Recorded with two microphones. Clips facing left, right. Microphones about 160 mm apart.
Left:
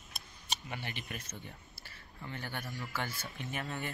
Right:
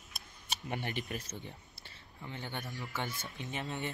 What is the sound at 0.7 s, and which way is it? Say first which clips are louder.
Speech: right 7 dB; 45° right (ahead or behind).